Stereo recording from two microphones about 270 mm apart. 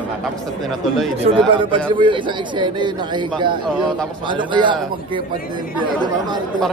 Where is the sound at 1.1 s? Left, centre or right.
Right.